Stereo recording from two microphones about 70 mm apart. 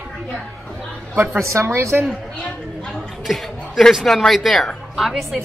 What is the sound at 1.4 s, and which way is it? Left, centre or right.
Speech, right.